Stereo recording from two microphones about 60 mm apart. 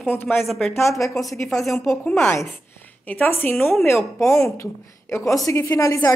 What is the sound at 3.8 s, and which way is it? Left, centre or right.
Speech, left.